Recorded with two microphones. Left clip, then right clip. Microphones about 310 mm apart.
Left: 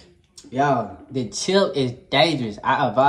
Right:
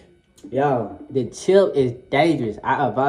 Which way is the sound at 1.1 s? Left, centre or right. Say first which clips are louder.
Right 4 dB; centre.